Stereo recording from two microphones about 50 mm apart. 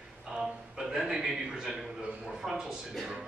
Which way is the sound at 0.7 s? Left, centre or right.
Centre.